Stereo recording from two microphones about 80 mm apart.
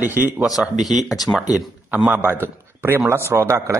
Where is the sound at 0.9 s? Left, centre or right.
Centre.